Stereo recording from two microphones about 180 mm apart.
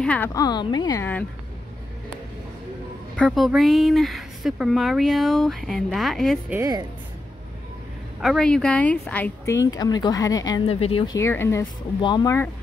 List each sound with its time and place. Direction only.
0.0 s a woman's voice: 10° left (ahead or behind)
0.3 s a woman's voice: 20° left (ahead or behind)
3.2 s speech: centre (ahead or behind)
6.5 s speech: 15° right (ahead or behind)
8.2 s speech: centre (ahead or behind); by 10.6 s 20° left (ahead or behind)
10.7 s speech: 30° left (ahead or behind)
11.1 s a woman's voice: 15° left (ahead or behind)